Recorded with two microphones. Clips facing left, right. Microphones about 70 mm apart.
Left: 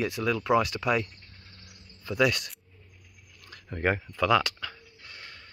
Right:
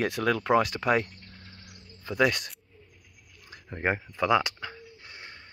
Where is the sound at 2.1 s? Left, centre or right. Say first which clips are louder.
Even; right.